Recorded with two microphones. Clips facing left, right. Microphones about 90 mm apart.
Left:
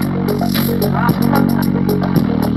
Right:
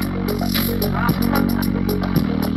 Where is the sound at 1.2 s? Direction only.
55° left (ahead or behind).